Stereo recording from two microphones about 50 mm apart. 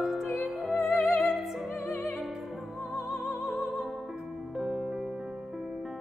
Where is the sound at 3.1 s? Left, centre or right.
Left.